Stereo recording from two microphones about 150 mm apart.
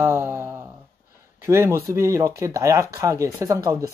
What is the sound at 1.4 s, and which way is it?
Speech, 15° right (ahead or behind).